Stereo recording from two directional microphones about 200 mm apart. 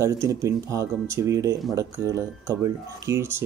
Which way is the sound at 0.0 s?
15° right (ahead or behind).